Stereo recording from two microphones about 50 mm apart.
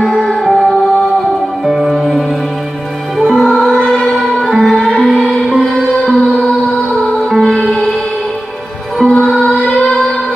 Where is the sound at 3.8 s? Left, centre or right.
Centre.